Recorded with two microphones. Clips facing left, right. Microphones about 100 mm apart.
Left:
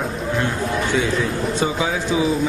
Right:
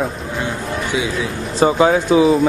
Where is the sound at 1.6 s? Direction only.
55° right (ahead or behind).